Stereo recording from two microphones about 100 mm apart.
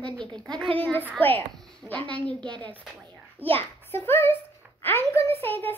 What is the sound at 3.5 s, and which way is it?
A child's voice, 20° left (ahead or behind).